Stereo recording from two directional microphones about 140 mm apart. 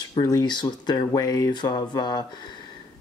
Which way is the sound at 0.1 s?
30° left (ahead or behind).